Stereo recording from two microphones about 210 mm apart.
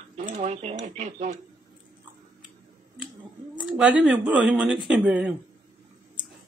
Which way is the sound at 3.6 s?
5° right (ahead or behind).